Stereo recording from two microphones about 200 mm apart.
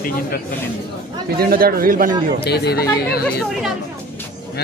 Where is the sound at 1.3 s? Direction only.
50° right (ahead or behind).